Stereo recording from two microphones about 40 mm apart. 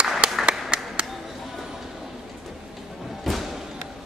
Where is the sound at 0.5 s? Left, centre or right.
Right.